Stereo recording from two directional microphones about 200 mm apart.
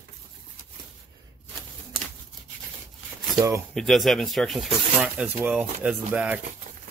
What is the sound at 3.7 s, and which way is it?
Speech, centre (ahead or behind).